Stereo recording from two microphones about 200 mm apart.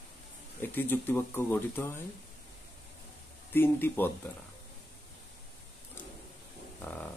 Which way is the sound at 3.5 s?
10° left (ahead or behind).